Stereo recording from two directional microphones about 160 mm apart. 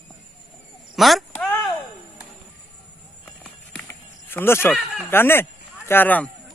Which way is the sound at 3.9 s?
15° left (ahead or behind).